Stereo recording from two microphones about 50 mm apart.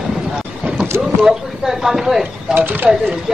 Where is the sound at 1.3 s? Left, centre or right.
Centre.